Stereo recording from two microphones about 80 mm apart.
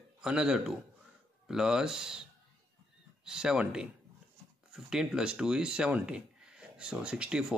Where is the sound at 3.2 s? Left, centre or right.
Centre.